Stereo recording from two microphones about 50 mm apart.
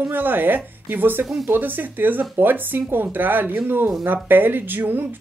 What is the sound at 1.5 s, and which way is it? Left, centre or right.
A woman's voice, right.